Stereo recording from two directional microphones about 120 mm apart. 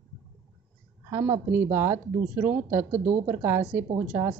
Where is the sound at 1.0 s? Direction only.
20° right (ahead or behind).